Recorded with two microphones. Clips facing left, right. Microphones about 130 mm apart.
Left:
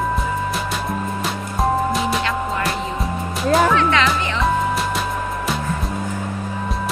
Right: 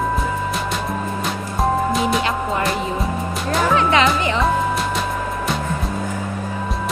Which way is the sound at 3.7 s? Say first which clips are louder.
Right 1 dB; 15° right (ahead or behind).